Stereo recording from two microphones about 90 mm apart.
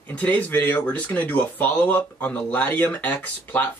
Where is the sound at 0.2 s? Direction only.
15° left (ahead or behind).